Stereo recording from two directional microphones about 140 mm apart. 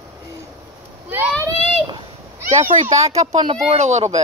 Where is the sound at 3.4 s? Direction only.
35° right (ahead or behind).